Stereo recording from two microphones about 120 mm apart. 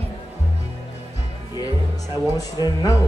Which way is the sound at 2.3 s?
30° left (ahead or behind).